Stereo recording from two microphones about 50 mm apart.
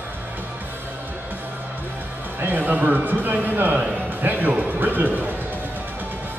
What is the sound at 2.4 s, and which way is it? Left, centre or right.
A man's voice, right.